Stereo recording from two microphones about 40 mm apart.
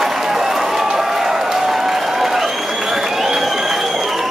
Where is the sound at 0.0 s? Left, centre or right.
Centre.